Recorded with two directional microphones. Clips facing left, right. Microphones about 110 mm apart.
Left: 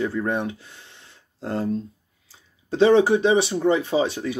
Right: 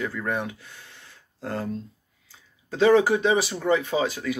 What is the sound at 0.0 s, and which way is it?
Speech, 30° left (ahead or behind).